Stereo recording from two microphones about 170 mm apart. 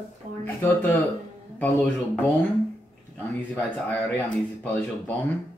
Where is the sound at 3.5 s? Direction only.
10° left (ahead or behind).